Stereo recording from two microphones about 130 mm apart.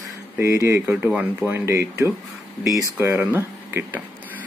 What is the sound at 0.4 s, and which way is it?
Speech, 20° right (ahead or behind).